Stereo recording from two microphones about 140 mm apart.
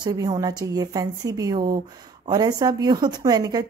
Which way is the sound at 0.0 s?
25° right (ahead or behind).